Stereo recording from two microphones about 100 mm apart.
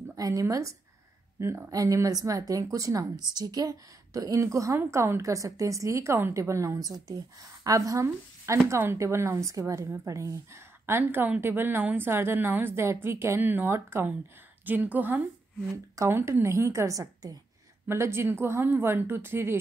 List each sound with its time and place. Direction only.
0.1 s a woman's voice: 35° right (ahead or behind)
1.7 s a woman's voice: 35° right (ahead or behind)
17.8 s a woman's voice: 25° right (ahead or behind)